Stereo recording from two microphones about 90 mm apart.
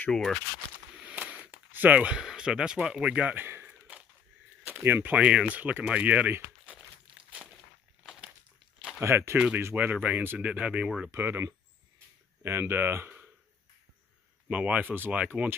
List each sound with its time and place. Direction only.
0.1 s speech: 5° left (ahead or behind)
0.9 s a sound: 15° right (ahead or behind)
3.8 s a sound: 15° right (ahead or behind)
4.6 s speech: 20° right (ahead or behind)
9.0 s speech: 30° right (ahead or behind); by 11.1 s 10° right (ahead or behind)
11.1 s speech: 25° right (ahead or behind)
14.5 s speech: 15° right (ahead or behind)